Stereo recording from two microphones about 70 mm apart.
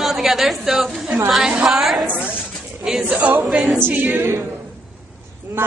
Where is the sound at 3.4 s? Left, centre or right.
Centre.